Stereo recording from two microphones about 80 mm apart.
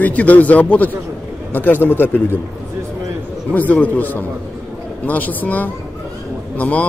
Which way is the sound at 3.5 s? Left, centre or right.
Left.